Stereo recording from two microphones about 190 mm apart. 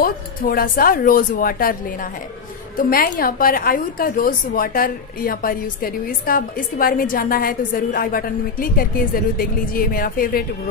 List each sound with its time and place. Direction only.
0.0 s a woman's voice: 50° left (ahead or behind)
2.8 s a woman's voice: 50° left (ahead or behind)